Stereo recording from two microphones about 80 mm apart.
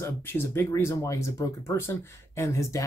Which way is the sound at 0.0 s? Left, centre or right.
Left.